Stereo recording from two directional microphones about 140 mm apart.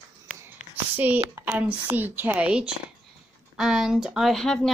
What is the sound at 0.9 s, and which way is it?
Speech, 15° right (ahead or behind).